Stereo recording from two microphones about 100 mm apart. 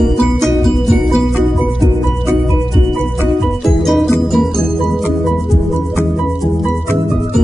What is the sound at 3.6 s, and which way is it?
Music, centre (ahead or behind).